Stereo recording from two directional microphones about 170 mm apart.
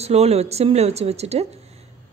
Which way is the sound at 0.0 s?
40° right (ahead or behind).